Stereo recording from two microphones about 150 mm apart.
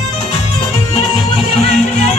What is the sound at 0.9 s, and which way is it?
Music, 40° left (ahead or behind).